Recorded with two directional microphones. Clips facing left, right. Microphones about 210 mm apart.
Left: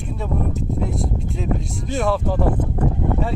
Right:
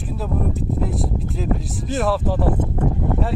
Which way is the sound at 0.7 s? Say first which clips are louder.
Even; centre (ahead or behind).